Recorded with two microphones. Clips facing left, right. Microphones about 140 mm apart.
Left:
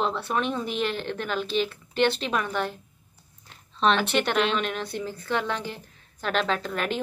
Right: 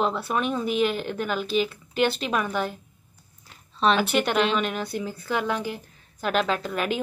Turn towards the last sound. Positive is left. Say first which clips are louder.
# right 1 dB
turn(degrees=-5)  # may be behind; listen again after turning